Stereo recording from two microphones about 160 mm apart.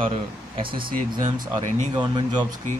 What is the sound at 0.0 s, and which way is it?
Speech, 35° right (ahead or behind).